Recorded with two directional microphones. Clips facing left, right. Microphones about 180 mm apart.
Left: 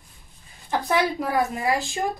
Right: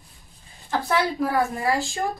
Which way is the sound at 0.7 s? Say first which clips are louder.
Left 1 dB; 15° left (ahead or behind).